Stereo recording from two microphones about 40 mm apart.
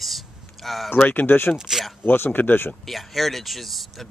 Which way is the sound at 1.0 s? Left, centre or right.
Left.